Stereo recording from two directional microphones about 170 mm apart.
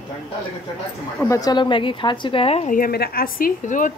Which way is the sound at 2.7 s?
60° left (ahead or behind).